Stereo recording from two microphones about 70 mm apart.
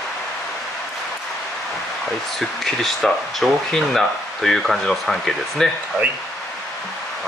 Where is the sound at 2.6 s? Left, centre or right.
Centre.